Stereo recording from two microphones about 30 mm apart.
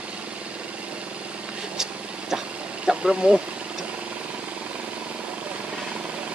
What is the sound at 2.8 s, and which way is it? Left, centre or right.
Speech, right.